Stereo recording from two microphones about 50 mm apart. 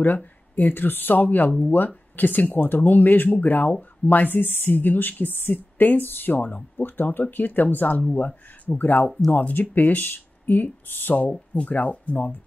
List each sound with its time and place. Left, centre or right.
0.0 s speech: left
11.5 s speech: left